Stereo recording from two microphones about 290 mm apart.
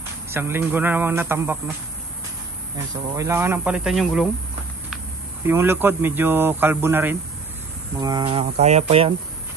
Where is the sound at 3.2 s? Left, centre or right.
Centre.